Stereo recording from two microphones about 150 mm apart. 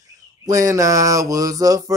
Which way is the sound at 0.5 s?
20° right (ahead or behind).